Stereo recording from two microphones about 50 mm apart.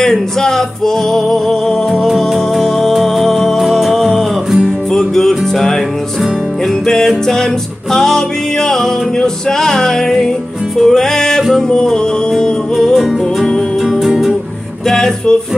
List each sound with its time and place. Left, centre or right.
0.0 s music: centre
6.9 s music: centre
12.7 s music: centre
14.9 s music: centre